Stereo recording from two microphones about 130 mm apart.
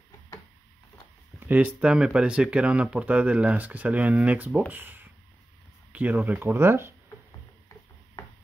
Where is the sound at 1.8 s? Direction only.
5° right (ahead or behind).